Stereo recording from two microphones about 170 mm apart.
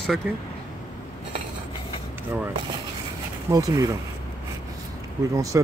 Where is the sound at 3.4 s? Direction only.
20° right (ahead or behind).